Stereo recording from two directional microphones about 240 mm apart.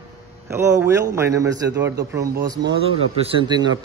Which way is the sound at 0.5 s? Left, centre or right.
Centre.